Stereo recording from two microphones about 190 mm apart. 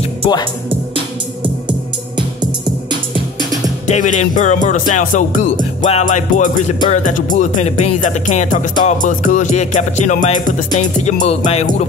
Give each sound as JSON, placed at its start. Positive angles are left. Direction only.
{"t": 0.7, "sound": "music", "side_deg": -25}
{"t": 3.9, "sound": "music", "side_deg": 40}